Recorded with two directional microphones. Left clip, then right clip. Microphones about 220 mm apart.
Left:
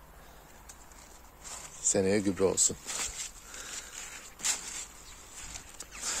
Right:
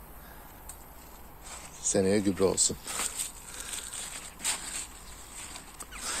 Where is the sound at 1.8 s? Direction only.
25° left (ahead or behind).